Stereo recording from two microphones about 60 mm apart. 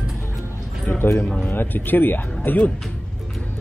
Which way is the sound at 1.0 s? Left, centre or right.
Left.